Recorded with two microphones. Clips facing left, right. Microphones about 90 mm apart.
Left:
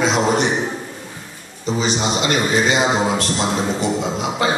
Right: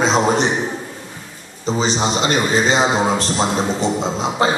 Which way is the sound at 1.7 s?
30° right (ahead or behind).